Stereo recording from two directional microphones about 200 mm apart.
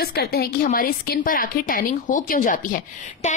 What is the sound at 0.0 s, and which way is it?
A woman's voice, 50° left (ahead or behind).